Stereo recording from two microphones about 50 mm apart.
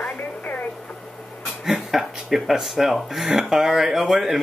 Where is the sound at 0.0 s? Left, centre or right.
Left.